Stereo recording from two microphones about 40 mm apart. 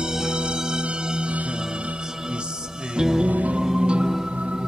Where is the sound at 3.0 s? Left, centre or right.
Centre.